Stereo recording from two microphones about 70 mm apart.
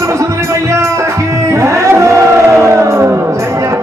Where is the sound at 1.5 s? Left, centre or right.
Right.